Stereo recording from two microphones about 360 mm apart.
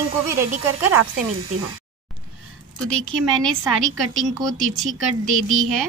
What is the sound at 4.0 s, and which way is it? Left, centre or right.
Speech, right.